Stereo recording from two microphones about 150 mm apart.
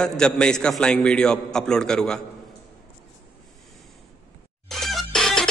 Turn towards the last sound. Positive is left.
turn(degrees=5)  # may be behind; listen again after turning